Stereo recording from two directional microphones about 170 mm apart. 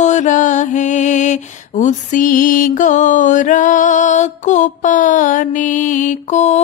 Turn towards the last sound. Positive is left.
turn(degrees=40)  # may be behind; listen again after turning